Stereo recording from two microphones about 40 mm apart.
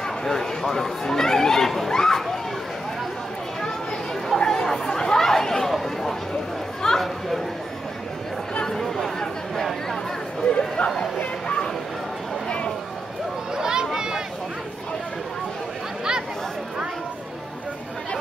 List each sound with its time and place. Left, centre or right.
0.0 s chatter: centre
4.4 s chatter: centre
6.8 s chatter: centre
8.6 s chatter: centre
10.5 s chatter: left
12.4 s a sound: left
13.6 s a sound: centre